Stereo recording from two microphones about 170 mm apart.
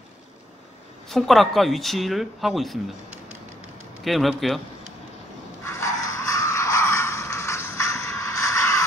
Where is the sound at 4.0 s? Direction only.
Centre (ahead or behind).